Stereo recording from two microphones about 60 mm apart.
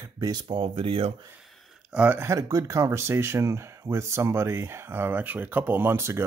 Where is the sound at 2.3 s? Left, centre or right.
Right.